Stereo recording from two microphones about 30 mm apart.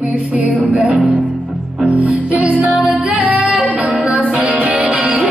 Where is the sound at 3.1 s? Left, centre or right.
Right.